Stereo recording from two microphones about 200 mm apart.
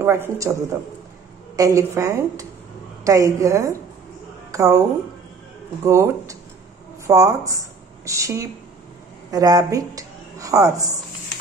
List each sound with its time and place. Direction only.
0.0 s a woman's voice: 15° right (ahead or behind)
5.9 s a woman's voice: 15° right (ahead or behind)